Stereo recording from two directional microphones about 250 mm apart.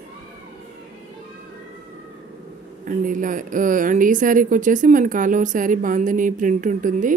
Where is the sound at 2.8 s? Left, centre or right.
Right.